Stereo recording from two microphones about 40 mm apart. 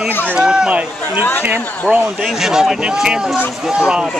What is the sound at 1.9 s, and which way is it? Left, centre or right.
Speech, centre.